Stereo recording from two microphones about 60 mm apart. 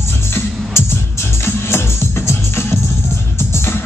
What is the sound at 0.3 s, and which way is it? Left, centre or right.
Music, left.